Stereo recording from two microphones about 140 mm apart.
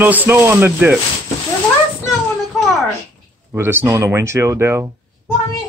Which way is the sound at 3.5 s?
20° right (ahead or behind).